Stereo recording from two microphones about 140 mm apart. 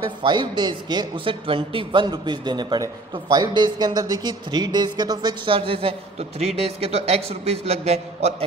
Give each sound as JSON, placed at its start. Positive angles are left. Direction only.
{"t": 0.2, "sound": "speech", "side_deg": -30}